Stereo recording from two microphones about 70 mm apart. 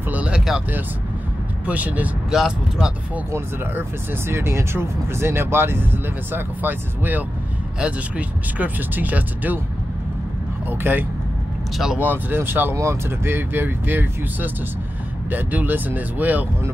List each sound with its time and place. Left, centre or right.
0.1 s a sound: centre
1.7 s speech: right
2.3 s speech: centre
3.3 s speech: right
10.7 s speech: right